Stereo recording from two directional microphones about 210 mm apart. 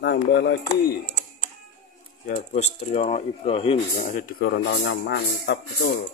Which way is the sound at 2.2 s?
35° left (ahead or behind).